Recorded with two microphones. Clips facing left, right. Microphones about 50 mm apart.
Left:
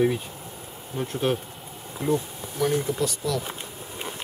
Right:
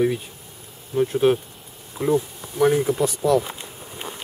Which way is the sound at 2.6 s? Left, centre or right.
Right.